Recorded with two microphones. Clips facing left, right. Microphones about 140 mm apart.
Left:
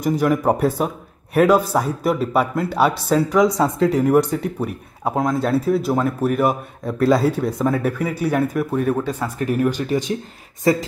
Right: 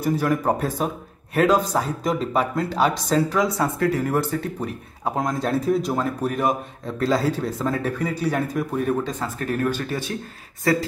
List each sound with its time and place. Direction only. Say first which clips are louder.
0.0 s a man's voice: left 3 dB; 15° left (ahead or behind)
5.1 s speech: left 4 dB; 5° left (ahead or behind); by 10.9 s 20° left (ahead or behind)